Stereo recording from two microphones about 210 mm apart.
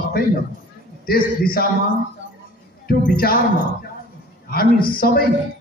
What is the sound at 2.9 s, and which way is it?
Speech, 45° left (ahead or behind).